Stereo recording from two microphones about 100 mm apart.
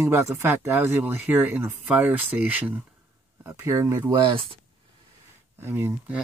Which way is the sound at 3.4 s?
30° right (ahead or behind).